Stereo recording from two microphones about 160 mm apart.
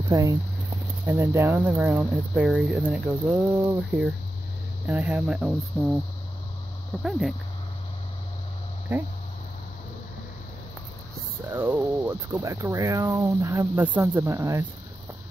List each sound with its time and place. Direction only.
0.1 s speech: 20° right (ahead or behind)
2.4 s speech: centre (ahead or behind)
7.0 s speech: centre (ahead or behind)
8.9 s speech: 15° right (ahead or behind)
11.5 s speech: 15° right (ahead or behind)